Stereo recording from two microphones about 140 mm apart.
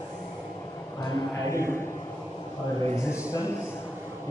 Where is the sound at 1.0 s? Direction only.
20° left (ahead or behind).